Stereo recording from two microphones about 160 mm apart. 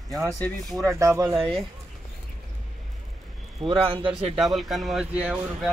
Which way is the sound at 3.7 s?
30° right (ahead or behind).